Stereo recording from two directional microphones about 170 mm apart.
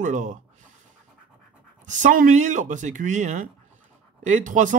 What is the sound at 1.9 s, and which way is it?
Speech, 45° right (ahead or behind).